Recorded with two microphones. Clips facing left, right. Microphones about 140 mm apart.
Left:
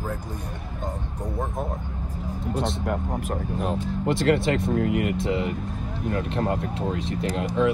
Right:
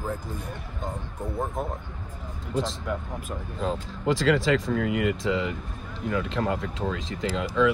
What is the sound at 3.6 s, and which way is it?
Speech, 90° right.